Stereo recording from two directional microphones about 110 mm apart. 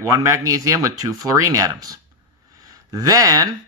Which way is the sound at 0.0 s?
30° right (ahead or behind).